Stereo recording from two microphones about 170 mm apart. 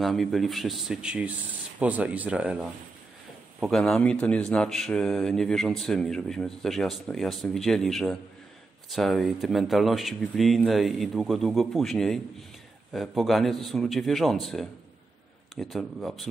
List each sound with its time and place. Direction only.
0.0 s speech: centre (ahead or behind)